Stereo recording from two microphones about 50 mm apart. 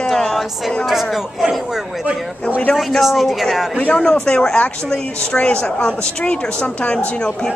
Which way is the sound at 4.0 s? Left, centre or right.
Centre.